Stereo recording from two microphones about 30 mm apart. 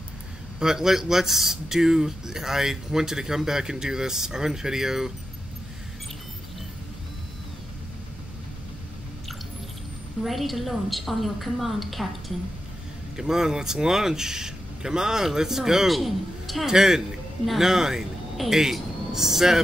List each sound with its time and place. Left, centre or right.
0.6 s speech: centre
10.2 s a woman's voice: centre
13.1 s speech: right
15.9 s a man's voice: centre
16.6 s speech: centre